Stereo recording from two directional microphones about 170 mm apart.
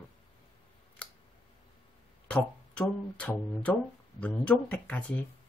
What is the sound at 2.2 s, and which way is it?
Speech, 5° left (ahead or behind).